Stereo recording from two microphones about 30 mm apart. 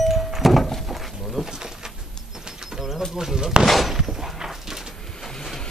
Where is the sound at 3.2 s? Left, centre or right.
Right.